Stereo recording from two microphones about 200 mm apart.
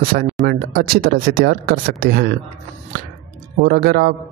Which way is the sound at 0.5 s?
50° right (ahead or behind).